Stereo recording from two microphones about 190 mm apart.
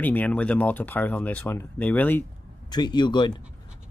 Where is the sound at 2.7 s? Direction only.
25° left (ahead or behind).